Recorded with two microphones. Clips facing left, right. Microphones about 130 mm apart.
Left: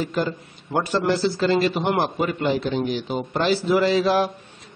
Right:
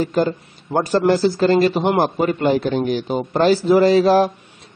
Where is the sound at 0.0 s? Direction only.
40° right (ahead or behind).